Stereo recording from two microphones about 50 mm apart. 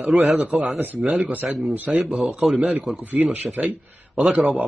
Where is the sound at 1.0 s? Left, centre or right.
Centre.